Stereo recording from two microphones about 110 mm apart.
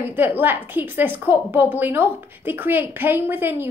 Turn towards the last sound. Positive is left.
turn(degrees=-20)  # may be behind; listen again after turning